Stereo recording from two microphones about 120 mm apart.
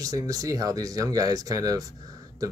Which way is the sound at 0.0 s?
30° right (ahead or behind).